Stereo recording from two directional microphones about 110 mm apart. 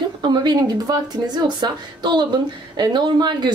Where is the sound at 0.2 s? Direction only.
40° right (ahead or behind).